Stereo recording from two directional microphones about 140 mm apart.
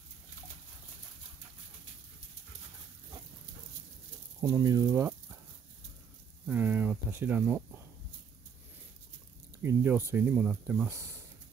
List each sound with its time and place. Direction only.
4.4 s speech: 25° right (ahead or behind)
6.4 s speech: 10° right (ahead or behind)
9.6 s speech: 15° right (ahead or behind)